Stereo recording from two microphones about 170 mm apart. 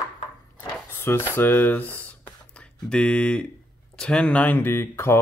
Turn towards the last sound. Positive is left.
turn(degrees=15)  # may be behind; listen again after turning